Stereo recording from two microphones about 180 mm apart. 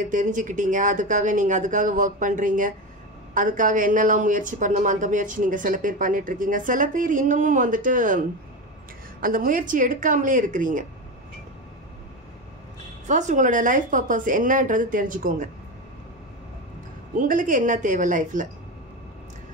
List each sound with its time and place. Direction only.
0.1 s a woman's voice: 45° right (ahead or behind)
9.2 s a woman's voice: 50° right (ahead or behind)
13.0 s a woman's voice: 45° right (ahead or behind)
17.1 s a woman's voice: 50° right (ahead or behind)